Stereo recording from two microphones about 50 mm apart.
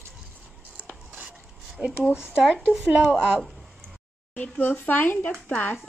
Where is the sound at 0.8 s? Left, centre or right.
Right.